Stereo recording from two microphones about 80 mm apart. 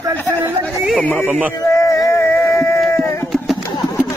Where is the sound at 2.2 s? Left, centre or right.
Left.